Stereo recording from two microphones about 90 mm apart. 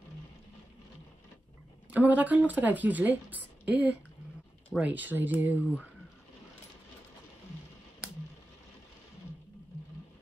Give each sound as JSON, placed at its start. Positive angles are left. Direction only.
{"t": 1.9, "sound": "speech", "side_deg": -15}